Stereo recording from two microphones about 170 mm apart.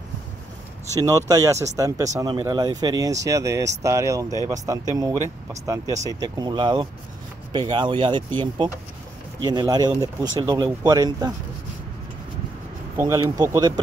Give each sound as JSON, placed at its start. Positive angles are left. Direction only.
{"t": 0.9, "sound": "speech", "side_deg": -20}
{"t": 12.9, "sound": "speech", "side_deg": -20}